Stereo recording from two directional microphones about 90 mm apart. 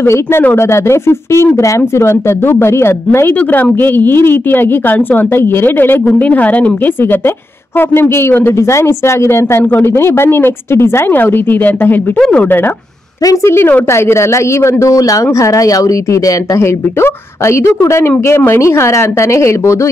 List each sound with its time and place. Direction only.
0.0 s a woman's voice: 25° left (ahead or behind)
13.2 s speech: 35° left (ahead or behind)